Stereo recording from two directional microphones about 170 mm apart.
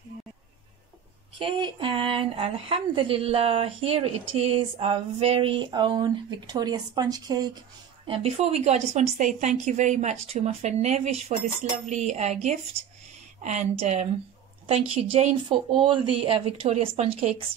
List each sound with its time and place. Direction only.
1.4 s a woman's voice: 30° right (ahead or behind)
8.1 s a woman's voice: 35° right (ahead or behind)